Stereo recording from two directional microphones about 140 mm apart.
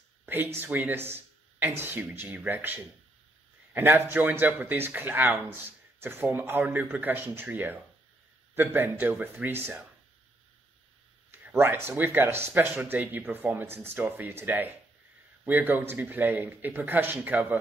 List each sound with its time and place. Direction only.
0.2 s a man's voice: 15° right (ahead or behind)
11.3 s a man's voice: 15° right (ahead or behind)